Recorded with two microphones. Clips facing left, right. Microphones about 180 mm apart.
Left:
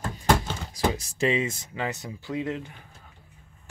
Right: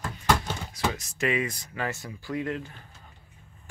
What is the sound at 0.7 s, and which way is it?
Speech, 35° left (ahead or behind).